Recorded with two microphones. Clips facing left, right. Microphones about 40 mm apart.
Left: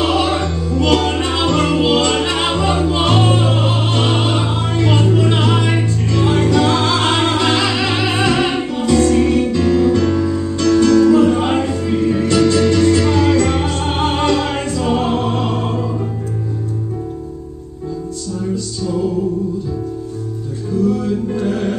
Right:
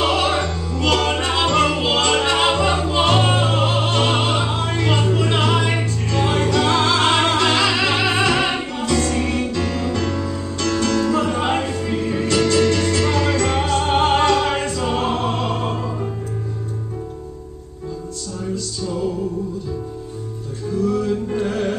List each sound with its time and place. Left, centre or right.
0.0 s music: centre
3.4 s opera: centre
12.7 s music: centre
20.7 s music: centre